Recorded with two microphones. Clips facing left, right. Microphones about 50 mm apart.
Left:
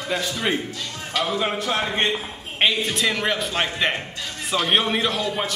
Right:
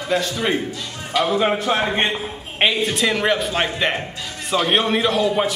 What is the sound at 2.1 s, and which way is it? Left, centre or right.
A man's voice, centre.